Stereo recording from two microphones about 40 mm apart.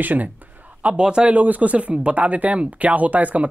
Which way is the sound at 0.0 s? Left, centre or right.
Right.